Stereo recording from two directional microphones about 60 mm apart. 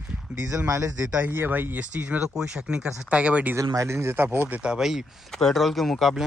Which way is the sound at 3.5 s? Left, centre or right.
Right.